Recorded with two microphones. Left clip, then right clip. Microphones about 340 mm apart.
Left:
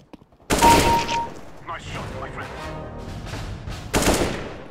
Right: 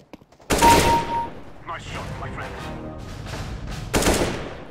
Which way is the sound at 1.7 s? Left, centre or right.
Centre.